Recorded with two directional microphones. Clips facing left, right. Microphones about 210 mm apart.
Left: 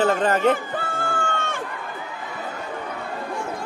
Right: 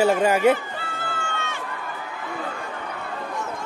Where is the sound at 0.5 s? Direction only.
50° left (ahead or behind).